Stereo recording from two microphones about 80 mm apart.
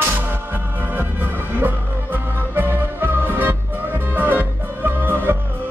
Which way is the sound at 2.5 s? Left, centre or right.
Right.